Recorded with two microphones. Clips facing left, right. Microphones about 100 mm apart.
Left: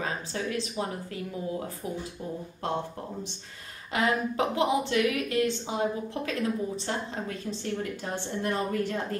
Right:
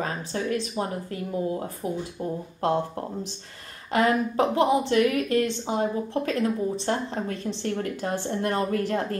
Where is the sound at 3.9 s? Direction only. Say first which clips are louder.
Right 5 dB; 40° right (ahead or behind).